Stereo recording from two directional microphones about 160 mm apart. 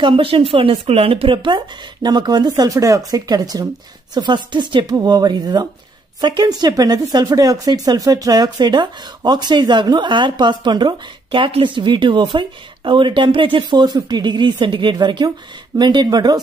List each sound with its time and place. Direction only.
0.0 s speech: 35° right (ahead or behind)